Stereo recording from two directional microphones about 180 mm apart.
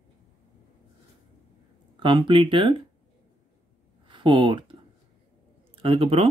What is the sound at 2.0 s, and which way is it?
Speech, 30° right (ahead or behind).